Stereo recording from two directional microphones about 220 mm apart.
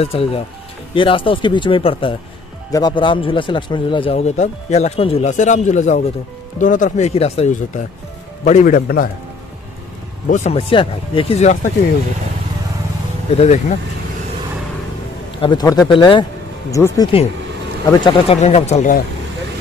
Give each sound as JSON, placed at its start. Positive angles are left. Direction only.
{"t": 0.0, "sound": "a man's voice", "side_deg": 25}
{"t": 10.3, "sound": "a man's voice", "side_deg": 30}
{"t": 13.4, "sound": "speech", "side_deg": 30}
{"t": 15.4, "sound": "a man's voice", "side_deg": 20}